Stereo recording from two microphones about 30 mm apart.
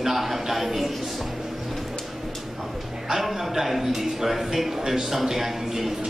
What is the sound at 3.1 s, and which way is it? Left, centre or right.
A man's voice, centre.